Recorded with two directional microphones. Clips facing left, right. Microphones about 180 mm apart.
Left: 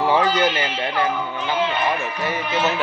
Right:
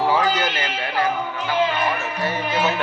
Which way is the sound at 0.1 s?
20° left (ahead or behind).